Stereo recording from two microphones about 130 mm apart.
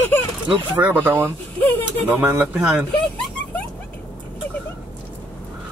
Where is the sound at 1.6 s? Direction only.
15° left (ahead or behind).